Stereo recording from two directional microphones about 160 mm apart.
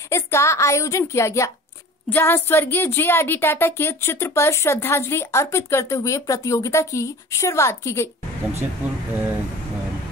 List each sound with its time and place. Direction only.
0.1 s a woman's voice: 15° left (ahead or behind)